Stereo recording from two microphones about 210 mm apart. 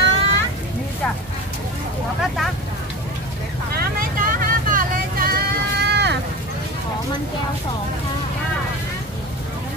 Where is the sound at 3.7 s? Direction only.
40° right (ahead or behind).